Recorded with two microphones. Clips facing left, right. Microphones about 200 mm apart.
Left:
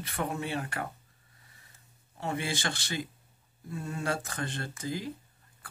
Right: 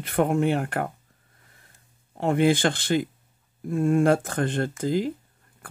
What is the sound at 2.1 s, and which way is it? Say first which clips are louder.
Speech: right 13 dB; 55° right (ahead or behind).